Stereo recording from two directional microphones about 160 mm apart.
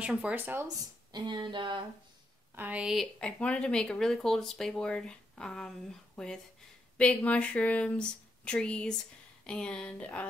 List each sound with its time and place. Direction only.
0.0 s speech: 5° right (ahead or behind)
1.1 s speech: 30° right (ahead or behind)
2.5 s speech: 10° right (ahead or behind); by 10.2 s 10° left (ahead or behind)